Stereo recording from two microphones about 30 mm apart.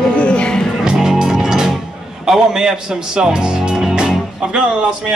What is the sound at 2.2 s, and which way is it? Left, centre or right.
Speech, centre.